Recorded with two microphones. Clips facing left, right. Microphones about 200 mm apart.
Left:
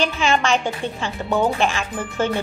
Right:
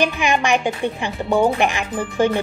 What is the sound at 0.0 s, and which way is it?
Speech, 15° right (ahead or behind).